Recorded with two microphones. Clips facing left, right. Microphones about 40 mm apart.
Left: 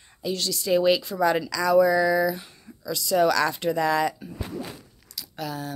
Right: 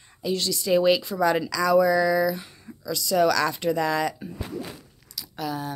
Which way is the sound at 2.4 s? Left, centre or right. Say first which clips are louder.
Right 2 dB; centre.